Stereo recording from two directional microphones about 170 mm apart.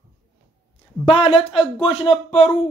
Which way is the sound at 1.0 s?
30° left (ahead or behind).